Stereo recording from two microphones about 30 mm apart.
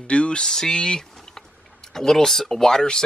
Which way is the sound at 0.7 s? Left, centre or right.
Left.